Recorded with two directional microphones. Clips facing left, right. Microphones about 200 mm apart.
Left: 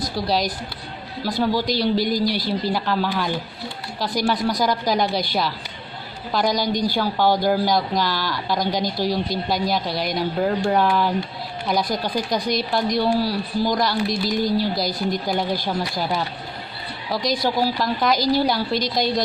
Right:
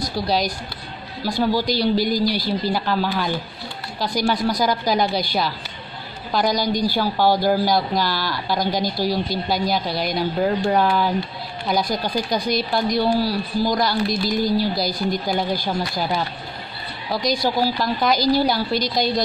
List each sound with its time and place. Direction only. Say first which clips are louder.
0.1 s speech: right 1 dB; centre (ahead or behind)